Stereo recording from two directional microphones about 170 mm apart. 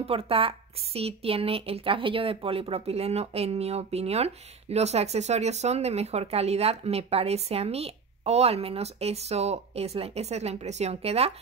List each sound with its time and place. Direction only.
0.0 s a woman's voice: 35° right (ahead or behind)